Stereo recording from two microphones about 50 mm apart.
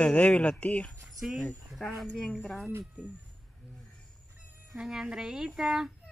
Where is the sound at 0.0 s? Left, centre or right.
Left.